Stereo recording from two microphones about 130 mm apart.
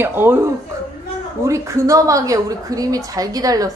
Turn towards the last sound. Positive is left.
turn(degrees=-30)  # may be behind; listen again after turning